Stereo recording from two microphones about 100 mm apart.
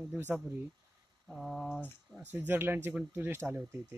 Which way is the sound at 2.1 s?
25° left (ahead or behind).